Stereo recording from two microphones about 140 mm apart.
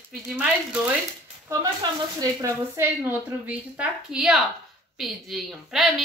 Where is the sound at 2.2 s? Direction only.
20° right (ahead or behind).